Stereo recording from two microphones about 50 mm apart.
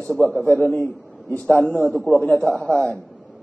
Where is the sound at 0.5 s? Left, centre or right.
Left.